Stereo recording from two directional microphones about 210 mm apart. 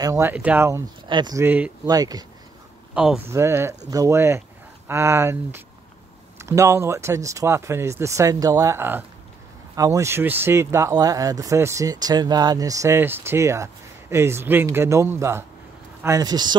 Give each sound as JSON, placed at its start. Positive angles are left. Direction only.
{"t": 0.0, "sound": "speech", "side_deg": -15}
{"t": 2.9, "sound": "speech", "side_deg": -5}